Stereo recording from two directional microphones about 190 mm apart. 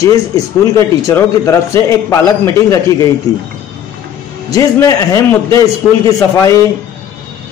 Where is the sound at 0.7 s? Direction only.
15° left (ahead or behind).